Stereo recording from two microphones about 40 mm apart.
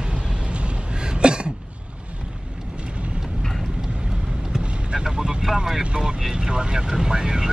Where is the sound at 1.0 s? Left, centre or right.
Right.